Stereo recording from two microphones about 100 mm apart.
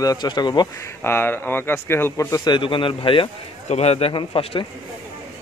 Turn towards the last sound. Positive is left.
turn(degrees=70)  # may be behind; listen again after turning